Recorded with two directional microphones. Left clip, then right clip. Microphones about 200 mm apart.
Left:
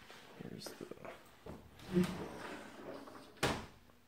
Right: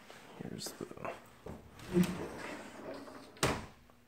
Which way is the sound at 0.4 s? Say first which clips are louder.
Right 5 dB; 15° right (ahead or behind).